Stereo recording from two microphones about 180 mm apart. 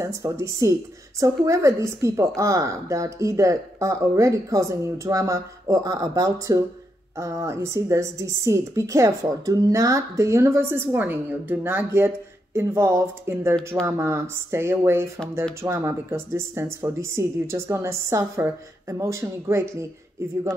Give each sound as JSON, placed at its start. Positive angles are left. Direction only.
{"t": 0.0, "sound": "a woman's voice", "side_deg": -15}